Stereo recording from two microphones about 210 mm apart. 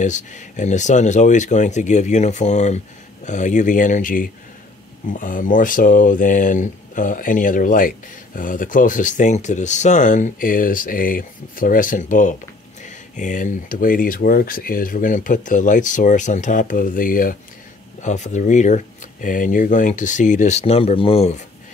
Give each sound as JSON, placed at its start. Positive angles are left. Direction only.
{"t": 0.0, "sound": "speech", "side_deg": 35}